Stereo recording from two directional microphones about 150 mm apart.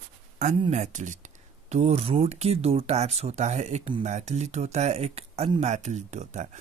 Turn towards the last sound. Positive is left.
turn(degrees=-50)  # may be behind; listen again after turning